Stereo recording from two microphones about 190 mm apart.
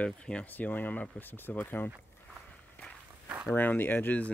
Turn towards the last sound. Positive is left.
turn(degrees=10)  # may be behind; listen again after turning